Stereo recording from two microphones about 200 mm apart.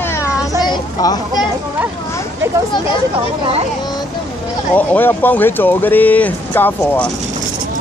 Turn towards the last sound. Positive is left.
turn(degrees=10)  # may be behind; listen again after turning